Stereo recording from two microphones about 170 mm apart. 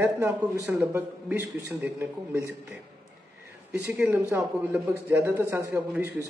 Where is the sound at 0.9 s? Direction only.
10° right (ahead or behind).